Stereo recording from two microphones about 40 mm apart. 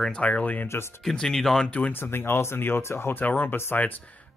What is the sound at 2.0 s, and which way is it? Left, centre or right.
Speech, left.